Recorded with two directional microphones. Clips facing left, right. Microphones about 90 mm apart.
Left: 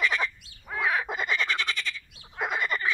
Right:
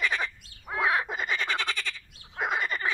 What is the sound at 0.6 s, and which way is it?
Frog, 15° right (ahead or behind).